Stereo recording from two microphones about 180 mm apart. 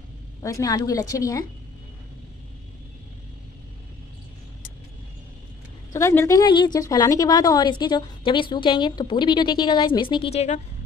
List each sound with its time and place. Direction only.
0.4 s a woman's voice: 20° left (ahead or behind)
5.9 s a woman's voice: 15° left (ahead or behind); by 10.6 s 35° left (ahead or behind)